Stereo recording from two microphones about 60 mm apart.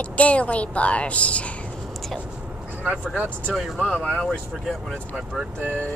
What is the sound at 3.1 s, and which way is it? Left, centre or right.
Speech, right.